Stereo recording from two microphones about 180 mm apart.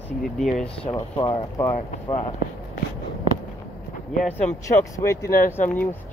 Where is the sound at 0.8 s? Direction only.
25° left (ahead or behind).